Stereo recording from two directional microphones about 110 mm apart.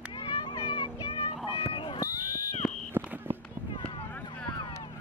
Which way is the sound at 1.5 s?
50° left (ahead or behind).